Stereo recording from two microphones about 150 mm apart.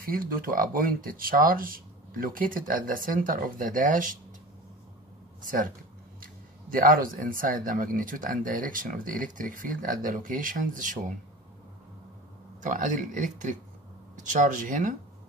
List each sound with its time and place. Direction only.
0.0 s speech: 70° right (ahead or behind)
5.4 s speech: 65° right (ahead or behind)
12.6 s speech: 55° right (ahead or behind)